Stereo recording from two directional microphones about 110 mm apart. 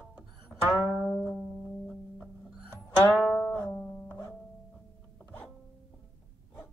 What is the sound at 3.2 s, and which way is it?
Music, 25° left (ahead or behind).